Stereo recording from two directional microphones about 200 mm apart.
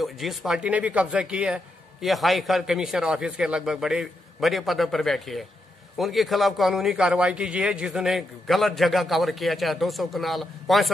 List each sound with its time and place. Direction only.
0.0 s speech: centre (ahead or behind)